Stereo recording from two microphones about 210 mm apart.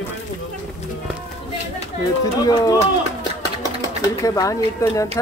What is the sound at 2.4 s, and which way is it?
Speech, 15° left (ahead or behind).